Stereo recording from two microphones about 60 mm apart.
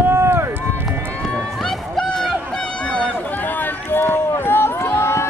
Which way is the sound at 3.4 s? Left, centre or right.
Left.